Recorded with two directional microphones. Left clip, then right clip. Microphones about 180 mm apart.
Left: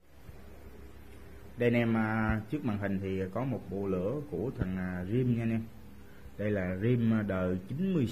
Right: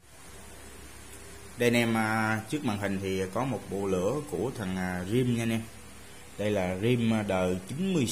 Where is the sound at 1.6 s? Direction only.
15° right (ahead or behind).